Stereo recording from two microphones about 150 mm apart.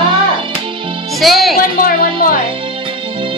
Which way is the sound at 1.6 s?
70° left (ahead or behind).